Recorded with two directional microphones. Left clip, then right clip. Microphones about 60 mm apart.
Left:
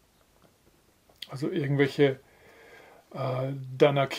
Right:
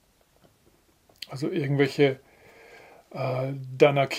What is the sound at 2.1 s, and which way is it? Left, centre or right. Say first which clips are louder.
Speech: right 1 dB; centre.